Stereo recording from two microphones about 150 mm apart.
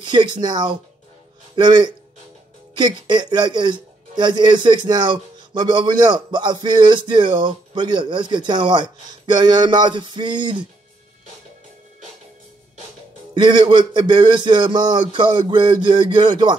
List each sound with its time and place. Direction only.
0.0 s a man's voice: 30° right (ahead or behind)
13.3 s speech: 30° right (ahead or behind)